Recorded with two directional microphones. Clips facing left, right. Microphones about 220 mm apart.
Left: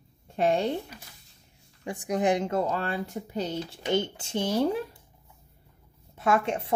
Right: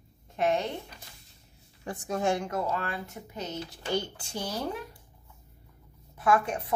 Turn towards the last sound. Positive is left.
turn(degrees=25)  # may be behind; listen again after turning